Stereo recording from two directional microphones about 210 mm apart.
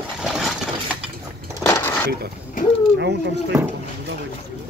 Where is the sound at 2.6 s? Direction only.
40° left (ahead or behind).